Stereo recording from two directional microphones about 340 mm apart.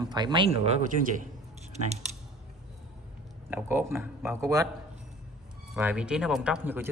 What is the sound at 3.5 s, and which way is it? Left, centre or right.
Speech, centre.